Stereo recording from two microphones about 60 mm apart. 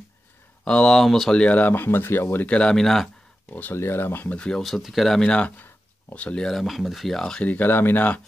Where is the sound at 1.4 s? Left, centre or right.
Left.